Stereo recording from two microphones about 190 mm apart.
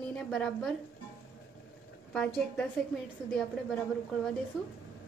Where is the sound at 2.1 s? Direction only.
5° left (ahead or behind).